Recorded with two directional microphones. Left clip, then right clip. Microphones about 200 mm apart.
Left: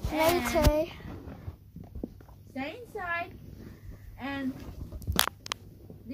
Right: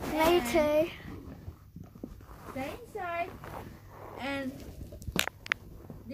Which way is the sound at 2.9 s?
30° right (ahead or behind).